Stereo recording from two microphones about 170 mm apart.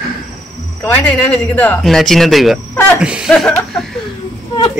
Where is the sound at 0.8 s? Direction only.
10° left (ahead or behind).